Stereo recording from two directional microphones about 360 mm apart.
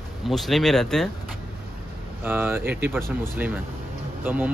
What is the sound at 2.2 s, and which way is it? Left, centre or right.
Speech, centre.